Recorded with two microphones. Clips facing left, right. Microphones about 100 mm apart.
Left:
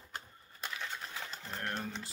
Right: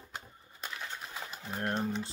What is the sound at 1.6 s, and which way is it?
Speech, 30° right (ahead or behind).